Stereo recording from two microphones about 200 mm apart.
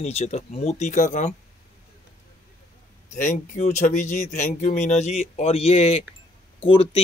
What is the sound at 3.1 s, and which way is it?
Speech, 40° left (ahead or behind).